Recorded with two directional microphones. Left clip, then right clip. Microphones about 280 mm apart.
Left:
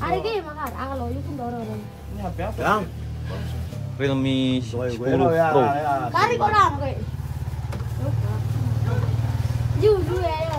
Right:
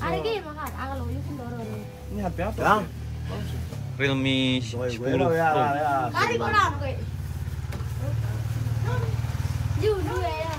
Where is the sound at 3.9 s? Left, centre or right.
Centre.